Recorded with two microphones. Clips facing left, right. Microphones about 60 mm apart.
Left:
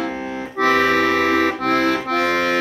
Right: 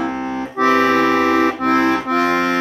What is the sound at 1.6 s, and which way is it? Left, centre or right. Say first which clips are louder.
Accordion: right 3 dB; centre.